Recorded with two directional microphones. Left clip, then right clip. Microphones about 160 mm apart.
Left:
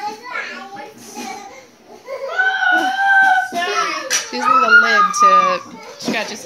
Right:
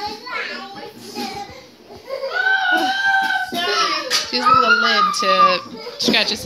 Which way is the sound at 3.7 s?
10° left (ahead or behind).